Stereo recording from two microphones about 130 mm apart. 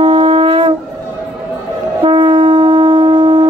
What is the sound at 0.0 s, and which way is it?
Shofar, 40° right (ahead or behind).